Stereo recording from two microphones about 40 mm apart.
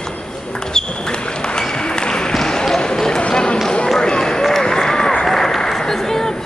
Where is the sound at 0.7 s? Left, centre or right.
Left.